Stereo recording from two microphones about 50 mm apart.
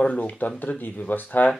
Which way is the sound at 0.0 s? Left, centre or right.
Left.